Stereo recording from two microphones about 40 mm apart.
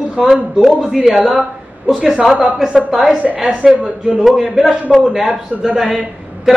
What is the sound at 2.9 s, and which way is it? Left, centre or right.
Speech, centre.